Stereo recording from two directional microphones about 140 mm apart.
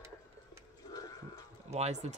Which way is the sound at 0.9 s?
25° left (ahead or behind).